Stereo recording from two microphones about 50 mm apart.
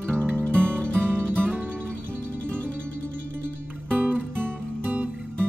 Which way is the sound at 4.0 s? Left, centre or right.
Right.